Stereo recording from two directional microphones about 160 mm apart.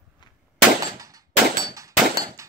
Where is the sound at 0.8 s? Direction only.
20° right (ahead or behind).